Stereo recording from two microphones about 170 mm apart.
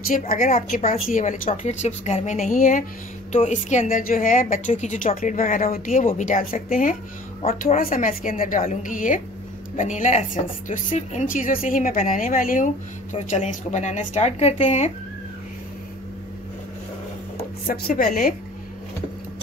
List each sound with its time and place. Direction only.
0.3 s a woman's voice: 55° left (ahead or behind)
13.1 s a woman's voice: 45° left (ahead or behind)
17.4 s speech: 60° left (ahead or behind)